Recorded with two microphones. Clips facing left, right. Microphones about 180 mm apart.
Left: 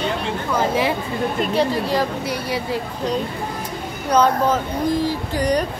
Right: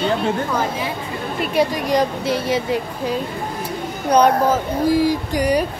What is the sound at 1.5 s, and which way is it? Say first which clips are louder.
A woman's voice: right 4 dB; 15° right (ahead or behind).